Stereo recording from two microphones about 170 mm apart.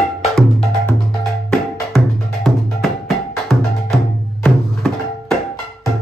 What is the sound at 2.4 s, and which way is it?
Music, centre (ahead or behind).